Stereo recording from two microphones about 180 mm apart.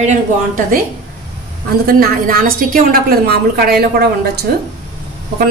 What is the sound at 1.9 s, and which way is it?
A woman's voice, 55° right (ahead or behind).